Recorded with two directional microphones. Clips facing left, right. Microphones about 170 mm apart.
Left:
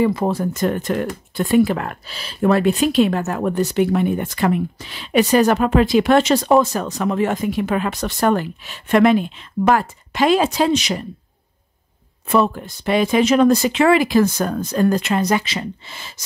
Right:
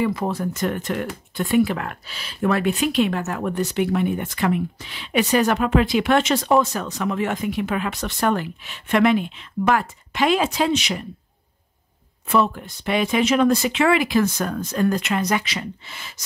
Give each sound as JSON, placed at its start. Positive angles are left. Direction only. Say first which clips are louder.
{"t": 0.0, "sound": "speech", "louder": "left 5 dB", "side_deg": 30}
{"t": 12.3, "sound": "speech", "louder": "left 3 dB", "side_deg": 35}